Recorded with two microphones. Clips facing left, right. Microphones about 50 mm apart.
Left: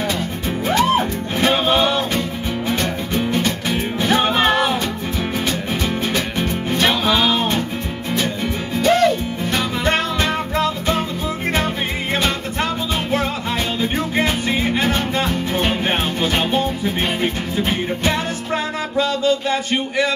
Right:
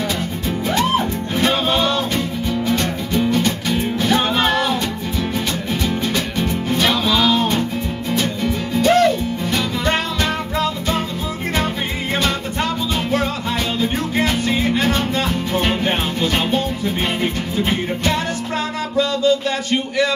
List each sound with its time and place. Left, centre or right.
0.7 s music: centre
3.1 s music: left
6.4 s music: centre
8.8 s music: centre
9.5 s music: left
13.7 s music: centre
16.3 s music: centre
19.2 s a sound: left